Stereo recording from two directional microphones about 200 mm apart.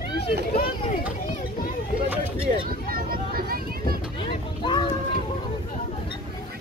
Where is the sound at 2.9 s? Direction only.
50° right (ahead or behind).